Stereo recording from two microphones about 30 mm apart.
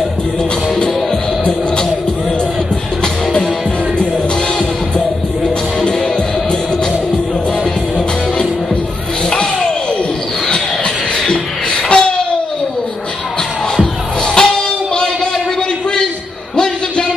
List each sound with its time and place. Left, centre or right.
11.2 s beatboxing: left
13.7 s music: left
16.5 s a sound: left